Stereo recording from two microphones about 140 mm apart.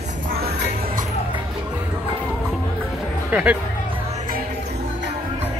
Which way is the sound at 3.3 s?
10° right (ahead or behind).